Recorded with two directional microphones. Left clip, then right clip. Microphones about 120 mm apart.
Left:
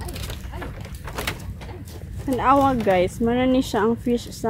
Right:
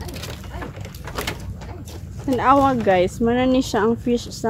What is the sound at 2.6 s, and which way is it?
Speech, 25° left (ahead or behind).